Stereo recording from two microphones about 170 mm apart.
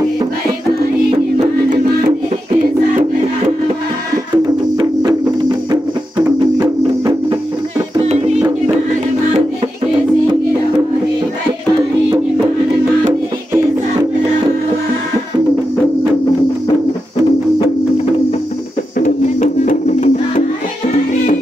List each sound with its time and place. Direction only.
18.9 s music: 45° left (ahead or behind)